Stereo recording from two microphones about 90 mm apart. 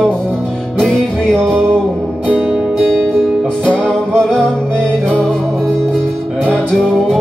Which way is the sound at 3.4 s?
10° left (ahead or behind).